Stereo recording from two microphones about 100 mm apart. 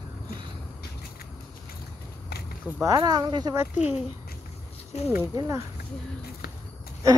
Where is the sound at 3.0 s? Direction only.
50° right (ahead or behind).